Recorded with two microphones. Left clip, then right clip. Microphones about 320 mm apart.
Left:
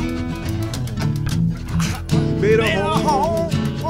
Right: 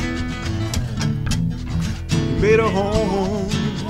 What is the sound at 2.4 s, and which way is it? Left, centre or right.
Music, centre.